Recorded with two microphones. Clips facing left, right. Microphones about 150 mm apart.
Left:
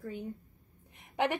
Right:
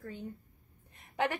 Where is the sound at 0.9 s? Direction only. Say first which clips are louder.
Left 2 dB; 20° left (ahead or behind).